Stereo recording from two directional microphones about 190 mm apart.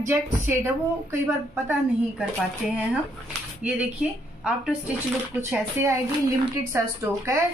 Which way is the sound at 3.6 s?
5° right (ahead or behind).